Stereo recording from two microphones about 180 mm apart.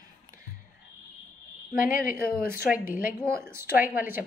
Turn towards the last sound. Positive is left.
turn(degrees=-10)  # may be behind; listen again after turning